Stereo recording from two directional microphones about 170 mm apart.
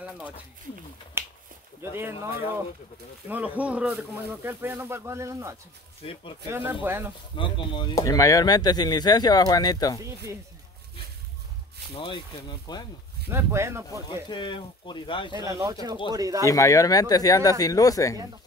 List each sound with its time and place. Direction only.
1.2 s a sound: 15° right (ahead or behind)
1.8 s speech: 15° right (ahead or behind)
3.3 s speech: 10° right (ahead or behind)
6.0 s speech: 35° left (ahead or behind)
6.5 s speech: 10° right (ahead or behind)
7.3 s speech: 30° left (ahead or behind)
12.0 s speech: 30° left (ahead or behind)
13.3 s speech: 15° right (ahead or behind)
14.3 s speech: 30° left (ahead or behind)
15.4 s speech: 20° right (ahead or behind)
16.4 s speech: 20° left (ahead or behind)